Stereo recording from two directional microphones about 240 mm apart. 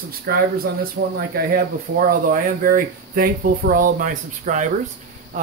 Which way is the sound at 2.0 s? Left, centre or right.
Right.